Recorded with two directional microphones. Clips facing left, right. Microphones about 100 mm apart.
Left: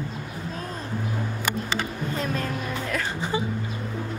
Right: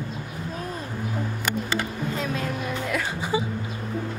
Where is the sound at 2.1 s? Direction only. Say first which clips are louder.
Left 1 dB; 5° right (ahead or behind).